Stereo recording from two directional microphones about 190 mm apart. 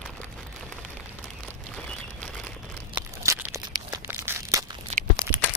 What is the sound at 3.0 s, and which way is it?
Crumpling, 10° right (ahead or behind).